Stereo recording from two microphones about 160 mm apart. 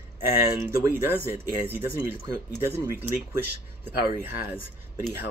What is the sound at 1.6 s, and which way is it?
Speech, 10° right (ahead or behind).